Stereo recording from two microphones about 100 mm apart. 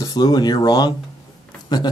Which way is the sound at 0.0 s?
40° left (ahead or behind).